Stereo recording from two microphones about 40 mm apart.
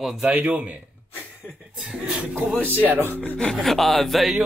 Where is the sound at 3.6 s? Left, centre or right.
Centre.